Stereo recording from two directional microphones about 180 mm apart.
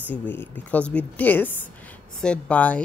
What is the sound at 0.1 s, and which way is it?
Speech, 10° left (ahead or behind).